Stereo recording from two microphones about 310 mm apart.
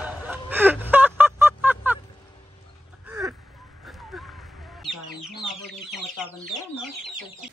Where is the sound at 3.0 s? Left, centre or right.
Centre.